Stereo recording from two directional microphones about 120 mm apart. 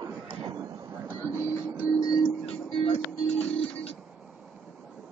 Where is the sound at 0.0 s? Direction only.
40° right (ahead or behind).